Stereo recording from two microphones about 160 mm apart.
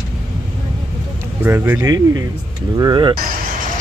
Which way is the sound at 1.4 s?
15° right (ahead or behind).